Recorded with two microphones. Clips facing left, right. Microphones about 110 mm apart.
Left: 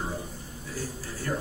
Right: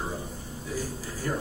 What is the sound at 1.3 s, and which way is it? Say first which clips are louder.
Speech: right 1 dB; 15° right (ahead or behind).